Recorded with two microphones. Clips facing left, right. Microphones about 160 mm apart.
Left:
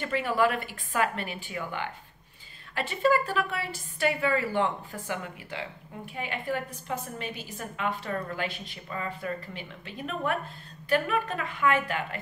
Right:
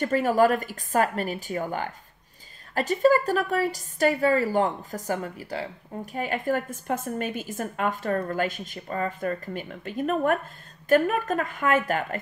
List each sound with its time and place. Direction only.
0.0 s a woman's voice: 40° right (ahead or behind)